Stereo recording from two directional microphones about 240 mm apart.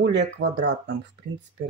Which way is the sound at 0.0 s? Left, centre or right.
Right.